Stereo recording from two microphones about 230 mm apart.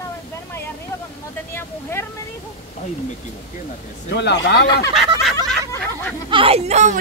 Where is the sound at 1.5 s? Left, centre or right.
Centre.